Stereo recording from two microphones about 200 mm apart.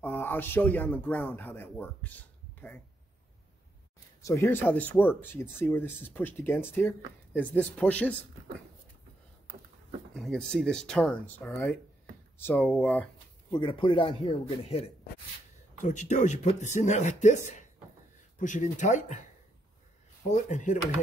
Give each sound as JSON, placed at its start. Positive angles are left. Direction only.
{"t": 0.0, "sound": "speech", "side_deg": 10}
{"t": 4.2, "sound": "speech", "side_deg": 15}
{"t": 10.1, "sound": "speech", "side_deg": 0}
{"t": 13.5, "sound": "speech", "side_deg": 25}
{"t": 20.2, "sound": "speech", "side_deg": 35}